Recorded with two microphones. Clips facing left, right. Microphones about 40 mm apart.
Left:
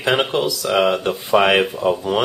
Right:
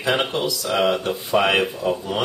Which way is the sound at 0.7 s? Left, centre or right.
Left.